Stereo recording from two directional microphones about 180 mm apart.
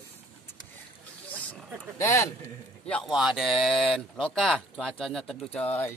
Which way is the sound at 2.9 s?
Centre (ahead or behind).